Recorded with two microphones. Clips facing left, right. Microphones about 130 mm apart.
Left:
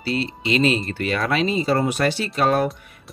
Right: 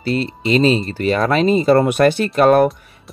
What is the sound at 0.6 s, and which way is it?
Speech, 30° right (ahead or behind).